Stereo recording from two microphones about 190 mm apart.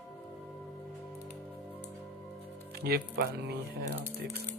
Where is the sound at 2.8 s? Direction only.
55° right (ahead or behind).